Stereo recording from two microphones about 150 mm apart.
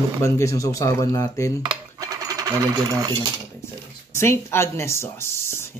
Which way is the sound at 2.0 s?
25° right (ahead or behind).